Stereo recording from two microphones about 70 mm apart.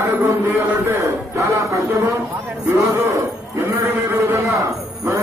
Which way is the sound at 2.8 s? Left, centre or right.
Right.